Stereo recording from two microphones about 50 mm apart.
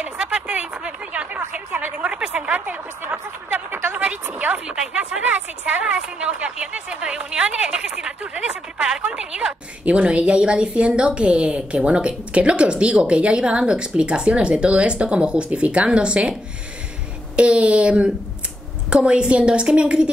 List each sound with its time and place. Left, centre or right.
0.0 s a sound: right
2.0 s a woman's voice: centre
3.8 s a sound: right
4.9 s a woman's voice: right
9.8 s a woman's voice: right
17.4 s a woman's voice: right